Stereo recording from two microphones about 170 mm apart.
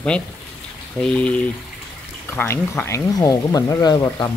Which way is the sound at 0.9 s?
5° left (ahead or behind).